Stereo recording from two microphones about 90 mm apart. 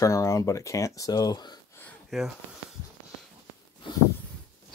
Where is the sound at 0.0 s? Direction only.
35° left (ahead or behind).